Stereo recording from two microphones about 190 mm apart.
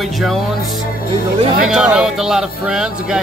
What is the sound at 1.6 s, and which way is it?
Speech, 5° right (ahead or behind).